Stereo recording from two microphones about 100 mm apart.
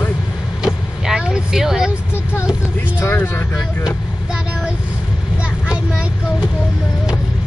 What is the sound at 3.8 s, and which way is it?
Vehicle, 5° right (ahead or behind).